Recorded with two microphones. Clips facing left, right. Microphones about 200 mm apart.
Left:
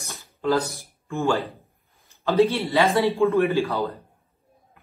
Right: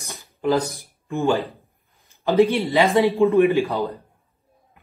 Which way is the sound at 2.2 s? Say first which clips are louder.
Right 2 dB; 15° right (ahead or behind).